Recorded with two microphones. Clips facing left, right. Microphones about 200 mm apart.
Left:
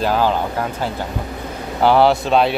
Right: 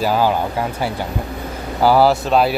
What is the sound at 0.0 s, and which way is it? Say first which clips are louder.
Speech: right 1 dB; 10° right (ahead or behind).